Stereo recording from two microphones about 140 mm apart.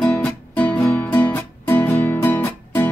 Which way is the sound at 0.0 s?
10° left (ahead or behind).